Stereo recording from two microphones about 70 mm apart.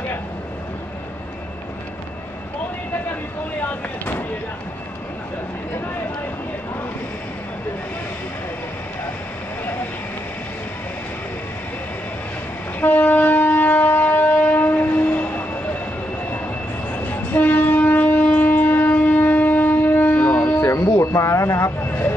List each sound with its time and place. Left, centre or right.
12.8 s shofar: left
16.9 s train: left
21.0 s a sound: left